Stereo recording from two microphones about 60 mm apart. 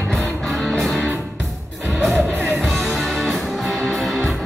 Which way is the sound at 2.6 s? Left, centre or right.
Centre.